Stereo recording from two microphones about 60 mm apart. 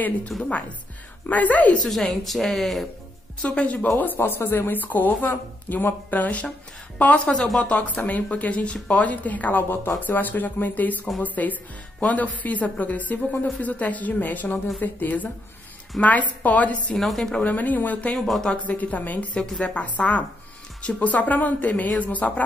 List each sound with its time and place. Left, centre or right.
0.3 s speech: centre
1.2 s a woman's voice: left
1.9 s speech: centre
3.4 s a woman's voice: left
4.2 s a woman's voice: left
7.4 s a woman's voice: centre
7.7 s a woman's voice: left
16.9 s a woman's voice: centre
17.4 s a woman's voice: left
18.1 s a woman's voice: centre
18.5 s a woman's voice: left